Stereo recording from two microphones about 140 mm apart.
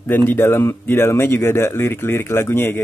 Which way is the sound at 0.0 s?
15° left (ahead or behind).